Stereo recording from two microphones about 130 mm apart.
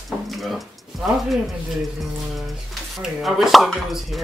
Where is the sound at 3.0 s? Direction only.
5° right (ahead or behind).